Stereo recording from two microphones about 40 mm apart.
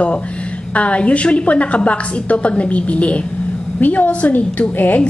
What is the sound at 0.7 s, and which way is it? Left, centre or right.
A woman's voice, left.